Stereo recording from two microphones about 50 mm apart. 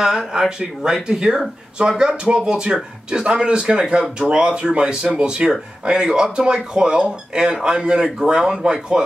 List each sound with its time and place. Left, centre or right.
0.0 s speech: centre